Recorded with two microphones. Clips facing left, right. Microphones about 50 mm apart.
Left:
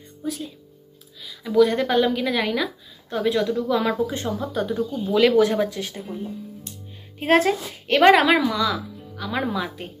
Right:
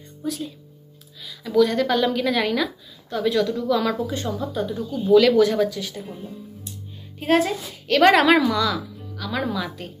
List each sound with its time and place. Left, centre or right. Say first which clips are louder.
0.2 s speech: right 1 dB; centre
2.0 s a woman's voice: right 1 dB; centre
3.1 s speech: even; left
4.4 s speech: left 2 dB; left
7.2 s speech: left 2 dB; left
8.0 s a woman's voice: even; centre
9.1 s speech: even; left